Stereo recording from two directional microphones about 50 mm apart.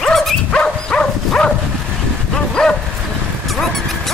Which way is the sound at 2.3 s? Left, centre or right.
Centre.